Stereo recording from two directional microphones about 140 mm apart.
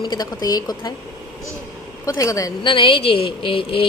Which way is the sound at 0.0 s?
30° left (ahead or behind).